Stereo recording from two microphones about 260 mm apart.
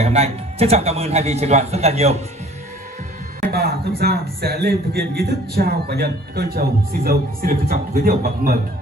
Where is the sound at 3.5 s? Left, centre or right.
Right.